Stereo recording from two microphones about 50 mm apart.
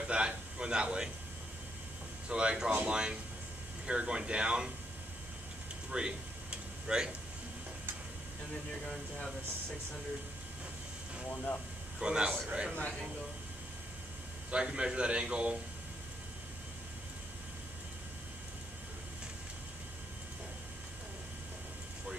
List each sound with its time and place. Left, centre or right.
0.0 s a man's voice: right
2.2 s a man's voice: centre
5.9 s a sound: centre
8.8 s speech: centre
11.2 s speech: left
12.0 s a man's voice: centre
14.5 s a man's voice: centre